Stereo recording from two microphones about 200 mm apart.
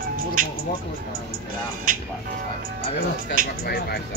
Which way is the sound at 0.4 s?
45° right (ahead or behind).